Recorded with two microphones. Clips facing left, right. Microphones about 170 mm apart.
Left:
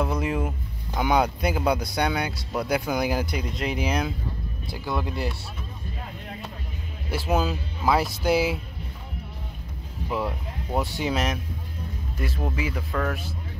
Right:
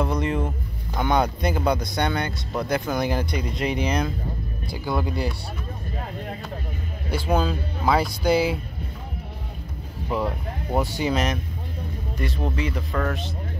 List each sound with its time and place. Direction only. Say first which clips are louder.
0.0 s a sound: right 2 dB; 5° left (ahead or behind)
0.9 s speech: even; 5° left (ahead or behind)
7.1 s speech: right 2 dB; 5° left (ahead or behind)
10.0 s speech: right 2 dB; centre (ahead or behind)